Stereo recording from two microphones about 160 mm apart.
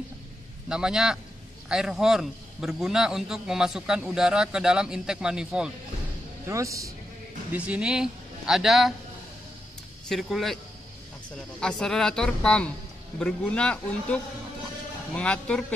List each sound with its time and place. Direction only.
0.7 s a man's voice: 5° right (ahead or behind)
6.4 s speech: 20° right (ahead or behind)
7.5 s a man's voice: 10° right (ahead or behind)
10.0 s a man's voice: centre (ahead or behind)